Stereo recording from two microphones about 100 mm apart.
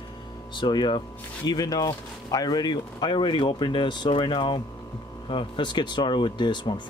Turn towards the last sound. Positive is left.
turn(degrees=50)  # may be behind; listen again after turning